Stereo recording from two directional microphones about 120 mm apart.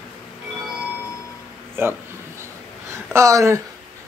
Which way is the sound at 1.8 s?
20° right (ahead or behind).